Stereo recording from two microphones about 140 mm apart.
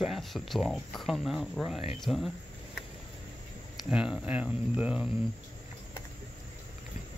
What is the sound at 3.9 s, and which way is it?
Speech, 5° right (ahead or behind).